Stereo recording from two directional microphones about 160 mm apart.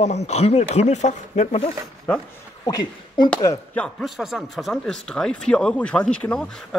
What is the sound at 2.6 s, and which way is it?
Speech, 25° left (ahead or behind).